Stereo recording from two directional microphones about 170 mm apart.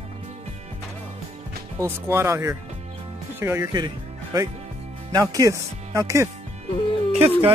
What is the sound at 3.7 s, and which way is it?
Music, 25° right (ahead or behind).